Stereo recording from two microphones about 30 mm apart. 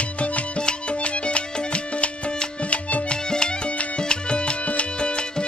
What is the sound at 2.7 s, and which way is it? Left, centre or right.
Music, left.